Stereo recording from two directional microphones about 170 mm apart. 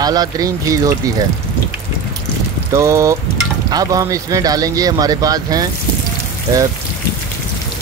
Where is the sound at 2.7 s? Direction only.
15° right (ahead or behind).